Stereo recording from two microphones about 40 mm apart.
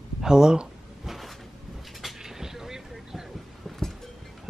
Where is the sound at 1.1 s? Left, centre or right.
Centre.